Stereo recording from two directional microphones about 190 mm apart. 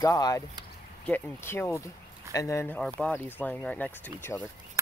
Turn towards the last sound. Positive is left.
turn(degrees=10)  # may be behind; listen again after turning